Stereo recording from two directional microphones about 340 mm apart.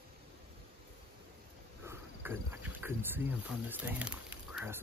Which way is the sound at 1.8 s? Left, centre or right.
Centre.